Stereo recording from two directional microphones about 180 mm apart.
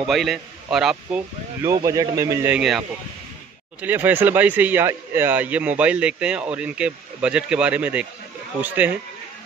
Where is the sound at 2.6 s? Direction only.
Centre (ahead or behind).